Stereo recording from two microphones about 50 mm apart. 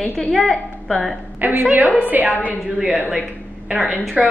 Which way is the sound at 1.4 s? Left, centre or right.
Right.